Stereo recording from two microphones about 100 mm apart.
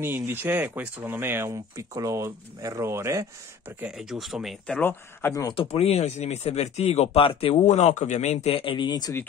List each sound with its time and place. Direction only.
0.0 s speech: 20° right (ahead or behind)
1.5 s speech: 35° right (ahead or behind)
3.8 s speech: 5° right (ahead or behind)
4.7 s speech: 20° left (ahead or behind)
5.5 s speech: 70° left (ahead or behind); by 7.8 s 90° left
8.5 s speech: 65° left (ahead or behind); by 9.1 s 45° left (ahead or behind)